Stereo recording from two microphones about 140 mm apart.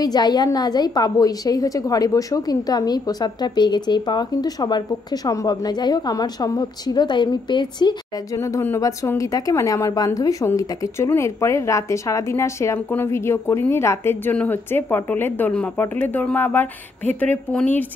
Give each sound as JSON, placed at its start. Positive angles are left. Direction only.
{"t": 0.0, "sound": "a woman's voice", "side_deg": 30}
{"t": 8.4, "sound": "a woman's voice", "side_deg": 20}